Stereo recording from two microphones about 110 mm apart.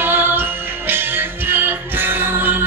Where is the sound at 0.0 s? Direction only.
20° right (ahead or behind).